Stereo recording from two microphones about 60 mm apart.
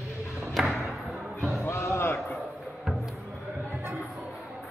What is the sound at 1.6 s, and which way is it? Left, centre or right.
Music, left.